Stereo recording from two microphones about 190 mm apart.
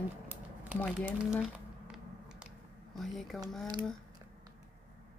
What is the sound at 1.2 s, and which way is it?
Squish, 5° right (ahead or behind).